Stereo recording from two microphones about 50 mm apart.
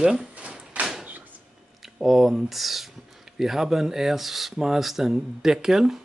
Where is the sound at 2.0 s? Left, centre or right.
Centre.